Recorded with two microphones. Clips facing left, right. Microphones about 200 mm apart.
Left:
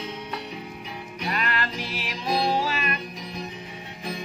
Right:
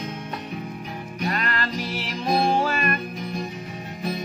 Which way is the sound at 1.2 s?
45° right (ahead or behind).